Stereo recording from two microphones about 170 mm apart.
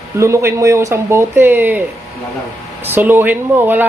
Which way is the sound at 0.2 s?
15° right (ahead or behind).